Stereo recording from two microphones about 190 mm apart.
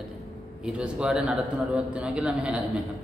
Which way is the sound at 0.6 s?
5° right (ahead or behind).